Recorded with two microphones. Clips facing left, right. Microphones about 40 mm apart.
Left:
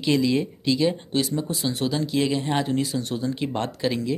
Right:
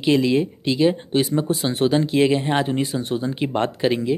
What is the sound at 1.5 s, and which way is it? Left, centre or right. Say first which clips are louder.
Speech: right 6 dB; right.